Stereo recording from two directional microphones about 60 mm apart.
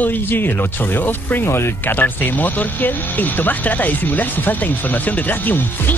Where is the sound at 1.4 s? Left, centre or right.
Left.